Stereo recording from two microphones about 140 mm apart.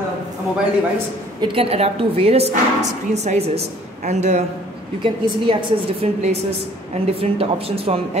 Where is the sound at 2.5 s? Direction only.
55° right (ahead or behind).